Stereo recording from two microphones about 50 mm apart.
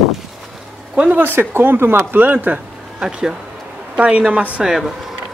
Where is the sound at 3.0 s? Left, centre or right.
Centre.